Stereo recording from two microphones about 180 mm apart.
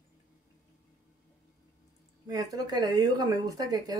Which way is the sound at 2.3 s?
20° right (ahead or behind).